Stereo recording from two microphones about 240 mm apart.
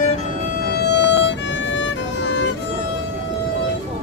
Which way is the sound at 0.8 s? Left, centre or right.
Left.